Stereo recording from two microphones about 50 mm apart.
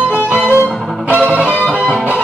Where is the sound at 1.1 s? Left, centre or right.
Right.